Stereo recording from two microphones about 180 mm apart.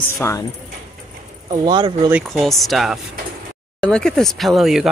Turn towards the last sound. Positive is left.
turn(degrees=0)  # may be behind; listen again after turning